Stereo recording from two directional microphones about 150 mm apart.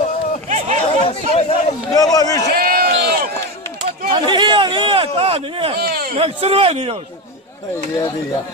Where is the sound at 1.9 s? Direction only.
25° left (ahead or behind).